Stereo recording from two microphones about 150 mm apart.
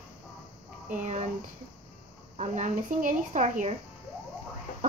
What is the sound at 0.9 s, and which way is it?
Speech, 50° right (ahead or behind).